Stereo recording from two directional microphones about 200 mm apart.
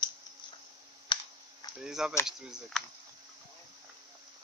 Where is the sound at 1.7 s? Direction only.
5° right (ahead or behind).